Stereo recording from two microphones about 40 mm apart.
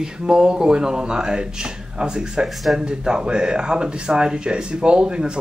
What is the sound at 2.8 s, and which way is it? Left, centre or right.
Speech, right.